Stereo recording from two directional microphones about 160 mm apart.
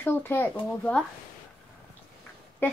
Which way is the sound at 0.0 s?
15° left (ahead or behind).